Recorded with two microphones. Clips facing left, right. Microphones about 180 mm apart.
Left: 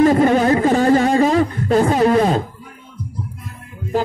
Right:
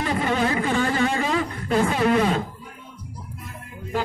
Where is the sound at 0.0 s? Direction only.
45° left (ahead or behind).